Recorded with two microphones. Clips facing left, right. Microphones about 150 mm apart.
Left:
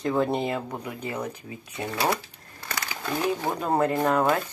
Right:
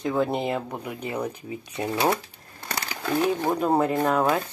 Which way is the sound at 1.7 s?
25° right (ahead or behind).